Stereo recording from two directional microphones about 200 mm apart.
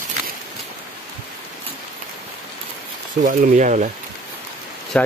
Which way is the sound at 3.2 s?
40° right (ahead or behind).